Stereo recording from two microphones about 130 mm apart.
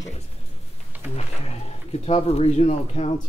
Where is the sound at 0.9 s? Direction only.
15° right (ahead or behind).